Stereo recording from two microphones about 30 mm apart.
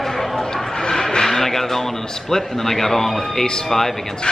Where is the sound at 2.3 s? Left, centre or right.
Centre.